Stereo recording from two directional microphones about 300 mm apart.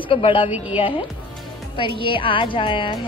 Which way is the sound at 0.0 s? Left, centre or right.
Centre.